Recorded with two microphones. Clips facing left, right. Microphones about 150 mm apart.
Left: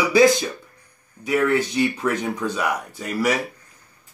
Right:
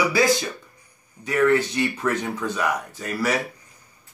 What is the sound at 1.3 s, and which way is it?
Speech, 10° left (ahead or behind).